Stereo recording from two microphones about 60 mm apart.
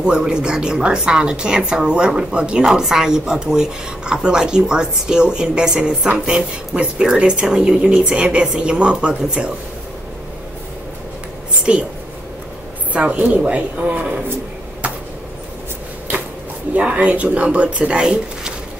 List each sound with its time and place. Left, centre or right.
0.0 s a woman's voice: centre
11.7 s speech: centre
12.9 s speech: right
16.7 s speech: right